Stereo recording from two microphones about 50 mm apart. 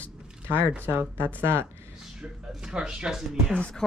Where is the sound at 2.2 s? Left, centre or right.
Centre.